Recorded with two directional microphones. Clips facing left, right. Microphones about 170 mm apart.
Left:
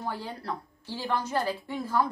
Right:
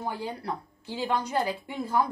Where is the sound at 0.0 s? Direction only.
15° right (ahead or behind).